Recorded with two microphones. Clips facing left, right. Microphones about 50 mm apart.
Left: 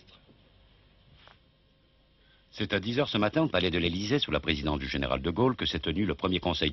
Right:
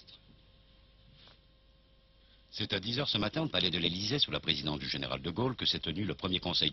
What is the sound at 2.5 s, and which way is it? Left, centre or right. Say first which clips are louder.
Speech: left 7 dB; left.